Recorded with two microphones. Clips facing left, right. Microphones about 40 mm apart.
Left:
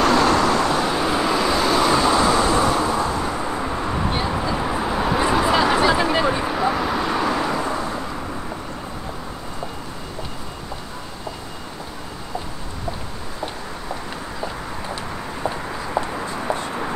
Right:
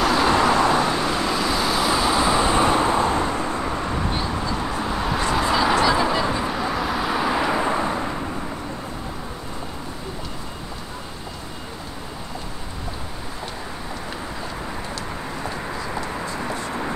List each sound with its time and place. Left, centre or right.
0.0 s vehicle: centre
0.3 s vehicle: centre
0.8 s vehicle: centre
2.2 s vehicle: centre; by 3.3 s right
3.3 s vehicle: centre
4.1 s a sound: centre
6.1 s vehicle: centre
6.7 s vehicle: centre; by 8.1 s right
15.4 s a sound: centre